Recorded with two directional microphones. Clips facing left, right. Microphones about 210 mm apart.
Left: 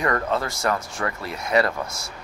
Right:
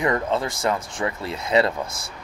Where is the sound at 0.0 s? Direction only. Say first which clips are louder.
Right 1 dB; 20° right (ahead or behind).